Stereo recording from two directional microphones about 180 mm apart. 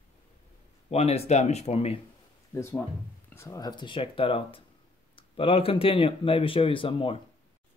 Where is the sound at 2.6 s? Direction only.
15° left (ahead or behind).